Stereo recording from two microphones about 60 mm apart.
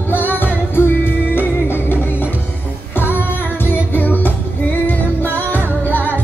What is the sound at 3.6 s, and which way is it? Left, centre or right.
Music, left.